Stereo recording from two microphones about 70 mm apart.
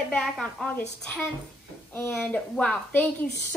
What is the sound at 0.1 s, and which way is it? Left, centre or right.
Speech, centre.